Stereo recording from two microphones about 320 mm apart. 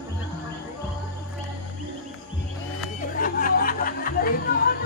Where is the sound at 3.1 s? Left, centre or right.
Left.